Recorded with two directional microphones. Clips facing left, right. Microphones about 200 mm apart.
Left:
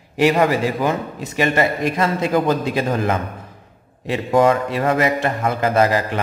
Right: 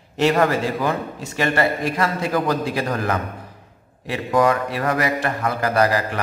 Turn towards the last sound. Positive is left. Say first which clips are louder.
# left 2 dB
turn(degrees=25)  # may be behind; listen again after turning